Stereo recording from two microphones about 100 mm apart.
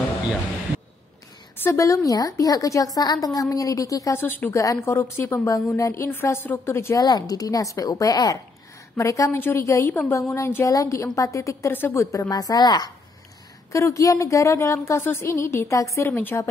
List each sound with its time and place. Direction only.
1.6 s a woman's voice: 30° left (ahead or behind)
7.0 s a woman's voice: 40° left (ahead or behind)
13.7 s a woman's voice: 30° left (ahead or behind)
16.1 s a woman's voice: 20° left (ahead or behind)